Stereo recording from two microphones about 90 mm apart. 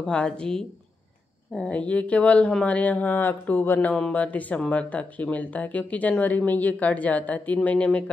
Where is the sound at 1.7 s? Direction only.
15° left (ahead or behind).